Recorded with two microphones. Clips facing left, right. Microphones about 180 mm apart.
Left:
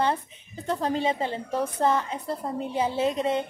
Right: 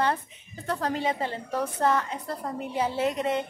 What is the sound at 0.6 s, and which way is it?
A woman's voice, 20° left (ahead or behind).